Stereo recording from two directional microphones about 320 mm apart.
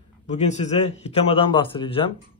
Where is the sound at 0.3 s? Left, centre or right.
Left.